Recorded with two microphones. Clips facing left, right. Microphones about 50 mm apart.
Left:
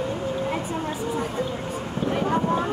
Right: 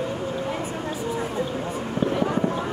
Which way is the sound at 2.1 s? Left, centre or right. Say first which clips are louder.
Left 3 dB; left.